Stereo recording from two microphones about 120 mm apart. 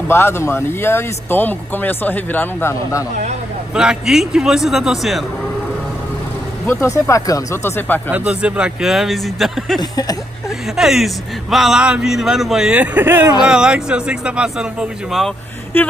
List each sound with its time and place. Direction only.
0.1 s speech: 20° left (ahead or behind)
3.7 s a man's voice: 5° right (ahead or behind)
6.6 s speech: 20° left (ahead or behind)
8.1 s a man's voice: 10° right (ahead or behind)
9.8 s speech: 30° left (ahead or behind)
10.8 s a man's voice: 5° right (ahead or behind)
12.7 s speech: 15° right (ahead or behind)
15.7 s speech: 15° left (ahead or behind)